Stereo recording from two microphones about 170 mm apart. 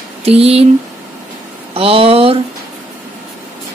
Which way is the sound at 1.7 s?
35° right (ahead or behind).